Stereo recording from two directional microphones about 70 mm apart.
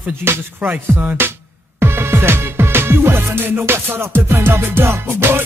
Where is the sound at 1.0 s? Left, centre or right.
Right.